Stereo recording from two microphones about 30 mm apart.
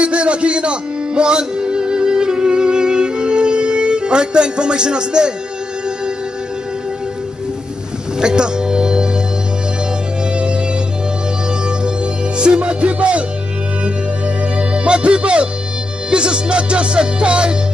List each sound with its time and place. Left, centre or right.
0.0 s music: right
8.2 s music: right
10.3 s music: right
12.4 s music: right
14.6 s speech: right
16.1 s music: right